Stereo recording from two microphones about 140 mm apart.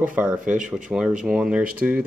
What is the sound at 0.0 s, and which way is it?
Speech, 10° right (ahead or behind).